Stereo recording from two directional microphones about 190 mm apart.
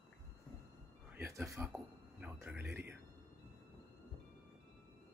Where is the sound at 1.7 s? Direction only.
10° right (ahead or behind).